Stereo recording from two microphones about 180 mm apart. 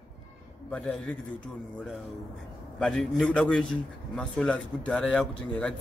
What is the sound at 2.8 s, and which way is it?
A man's voice, 5° left (ahead or behind).